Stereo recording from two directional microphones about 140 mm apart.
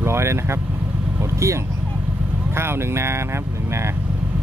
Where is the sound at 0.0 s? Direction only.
20° right (ahead or behind).